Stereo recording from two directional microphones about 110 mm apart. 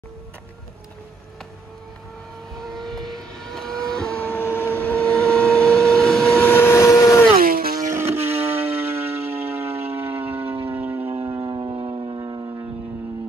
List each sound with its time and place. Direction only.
2.5 s vehicle: centre (ahead or behind)
6.4 s vehicle: 20° left (ahead or behind)
7.9 s music: 20° right (ahead or behind)
11.2 s a sound: 45° right (ahead or behind)
12.2 s music: 25° right (ahead or behind)